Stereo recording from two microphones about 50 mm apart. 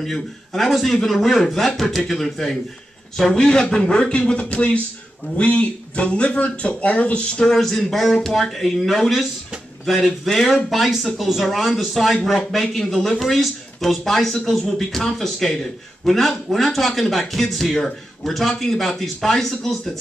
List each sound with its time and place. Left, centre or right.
0.0 s speech: centre